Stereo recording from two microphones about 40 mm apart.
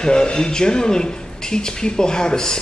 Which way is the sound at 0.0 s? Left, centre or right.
Centre.